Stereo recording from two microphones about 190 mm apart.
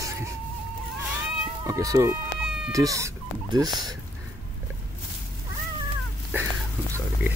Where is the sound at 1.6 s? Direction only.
15° right (ahead or behind).